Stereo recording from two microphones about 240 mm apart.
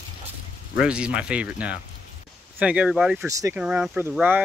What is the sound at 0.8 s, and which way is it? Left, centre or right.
Speech, centre.